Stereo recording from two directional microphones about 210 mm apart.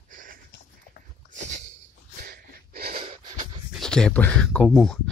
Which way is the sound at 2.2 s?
45° right (ahead or behind).